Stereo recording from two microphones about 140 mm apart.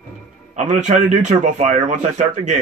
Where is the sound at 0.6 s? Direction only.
60° right (ahead or behind).